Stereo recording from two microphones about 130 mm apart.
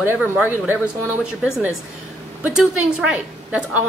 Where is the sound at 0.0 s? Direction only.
15° right (ahead or behind).